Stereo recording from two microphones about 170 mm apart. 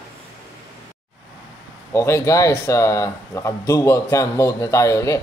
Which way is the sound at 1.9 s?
15° left (ahead or behind).